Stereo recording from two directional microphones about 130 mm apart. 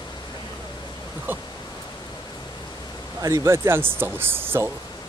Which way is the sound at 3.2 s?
25° right (ahead or behind).